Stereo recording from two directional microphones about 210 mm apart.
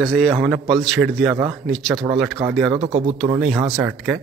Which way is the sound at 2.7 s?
25° right (ahead or behind).